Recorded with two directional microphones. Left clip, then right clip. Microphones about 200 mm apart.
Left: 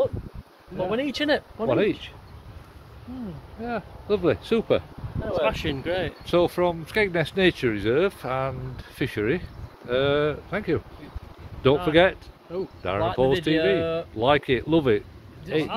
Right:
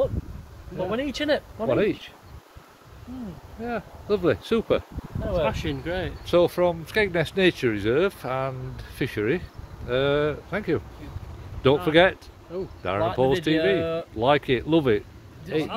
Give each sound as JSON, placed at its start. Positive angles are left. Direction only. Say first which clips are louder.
{"t": 0.8, "sound": "speech", "louder": "left 1 dB", "side_deg": 25}
{"t": 1.7, "sound": "speech", "louder": "even", "side_deg": 0}
{"t": 3.6, "sound": "speech", "louder": "even", "side_deg": -10}
{"t": 5.4, "sound": "speech", "louder": "left 3 dB", "side_deg": 40}
{"t": 6.2, "sound": "speech", "louder": "right 2 dB", "side_deg": -5}
{"t": 11.9, "sound": "speech", "louder": "right 1 dB", "side_deg": -5}
{"t": 12.5, "sound": "speech", "louder": "left 2 dB", "side_deg": 45}
{"t": 12.8, "sound": "speech", "louder": "even", "side_deg": -5}